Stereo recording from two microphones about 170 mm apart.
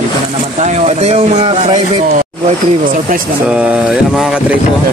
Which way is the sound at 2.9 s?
55° right (ahead or behind).